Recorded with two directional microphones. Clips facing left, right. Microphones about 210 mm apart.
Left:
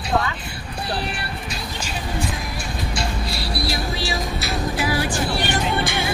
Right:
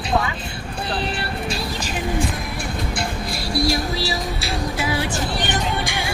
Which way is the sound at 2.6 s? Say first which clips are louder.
Right 2 dB; 55° right (ahead or behind).